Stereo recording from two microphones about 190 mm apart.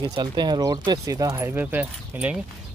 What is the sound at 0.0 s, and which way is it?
Speech, 25° right (ahead or behind).